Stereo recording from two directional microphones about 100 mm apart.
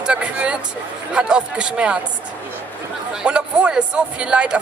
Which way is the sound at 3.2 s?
10° right (ahead or behind).